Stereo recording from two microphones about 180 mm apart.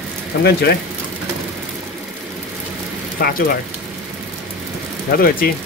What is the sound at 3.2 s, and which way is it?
Speech, 55° left (ahead or behind).